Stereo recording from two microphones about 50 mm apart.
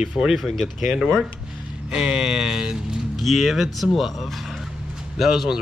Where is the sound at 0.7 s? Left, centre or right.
Centre.